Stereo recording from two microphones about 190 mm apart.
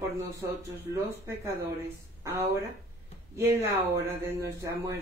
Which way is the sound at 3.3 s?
15° right (ahead or behind).